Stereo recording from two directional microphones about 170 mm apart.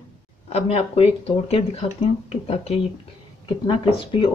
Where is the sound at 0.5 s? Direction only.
40° left (ahead or behind).